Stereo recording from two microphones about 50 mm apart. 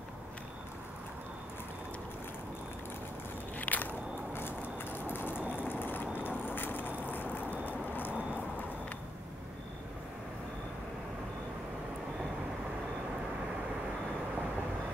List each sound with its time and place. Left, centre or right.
3.5 s biting: left
4.3 s vehicle: left
7.6 s a sound: left